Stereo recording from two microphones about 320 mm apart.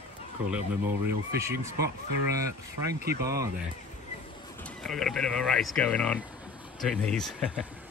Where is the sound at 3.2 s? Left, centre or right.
Centre.